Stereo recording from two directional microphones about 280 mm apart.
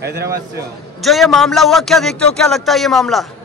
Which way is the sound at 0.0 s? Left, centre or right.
Right.